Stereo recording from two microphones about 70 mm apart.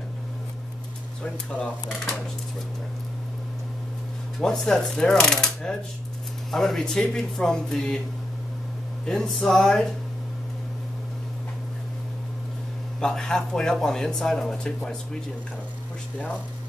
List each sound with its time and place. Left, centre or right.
1.2 s speech: centre
4.4 s speech: centre
9.0 s speech: centre
13.0 s speech: centre